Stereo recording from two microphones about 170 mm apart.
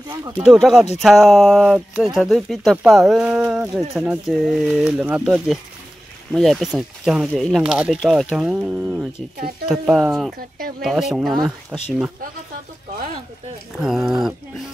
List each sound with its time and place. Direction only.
0.1 s speech: 25° right (ahead or behind)
0.5 s speech: centre (ahead or behind)
13.7 s speech: centre (ahead or behind)